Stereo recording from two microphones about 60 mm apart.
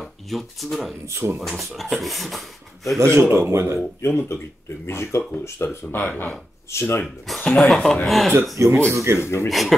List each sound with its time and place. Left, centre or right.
0.0 s speech: centre
1.0 s speech: right
1.6 s speech: centre
3.0 s speech: right
4.0 s speech: left
6.7 s speech: left
7.4 s speech: centre
8.5 s speech: right
9.2 s speech: left
9.5 s speech: centre